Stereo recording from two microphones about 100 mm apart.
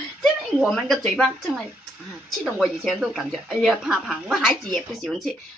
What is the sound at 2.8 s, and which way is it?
Speech, 5° right (ahead or behind).